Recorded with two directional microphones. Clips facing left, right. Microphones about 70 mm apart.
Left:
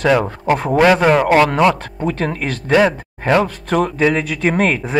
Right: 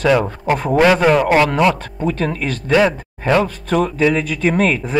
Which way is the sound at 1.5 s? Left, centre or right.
Left.